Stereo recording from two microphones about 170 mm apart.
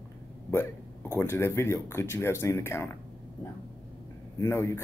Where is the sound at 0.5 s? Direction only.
15° left (ahead or behind).